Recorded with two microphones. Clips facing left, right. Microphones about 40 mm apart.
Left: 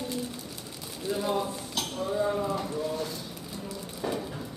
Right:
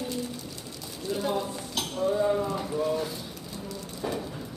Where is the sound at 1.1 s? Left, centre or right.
Centre.